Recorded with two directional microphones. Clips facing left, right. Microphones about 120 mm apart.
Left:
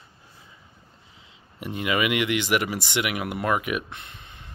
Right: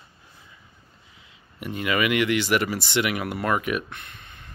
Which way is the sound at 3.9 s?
25° left (ahead or behind).